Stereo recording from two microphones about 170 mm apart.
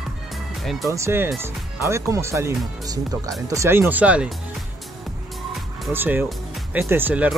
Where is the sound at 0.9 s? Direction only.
15° right (ahead or behind).